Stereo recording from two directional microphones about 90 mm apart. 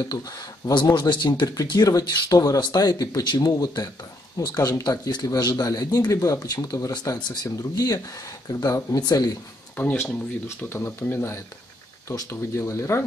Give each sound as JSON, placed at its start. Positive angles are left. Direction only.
{"t": 0.1, "sound": "speech", "side_deg": 45}
{"t": 0.8, "sound": "speech", "side_deg": 55}
{"t": 1.6, "sound": "speech", "side_deg": 45}
{"t": 9.8, "sound": "speech", "side_deg": 20}